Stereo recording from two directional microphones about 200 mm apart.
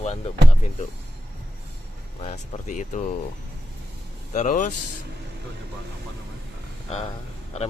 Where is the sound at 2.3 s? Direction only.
35° left (ahead or behind).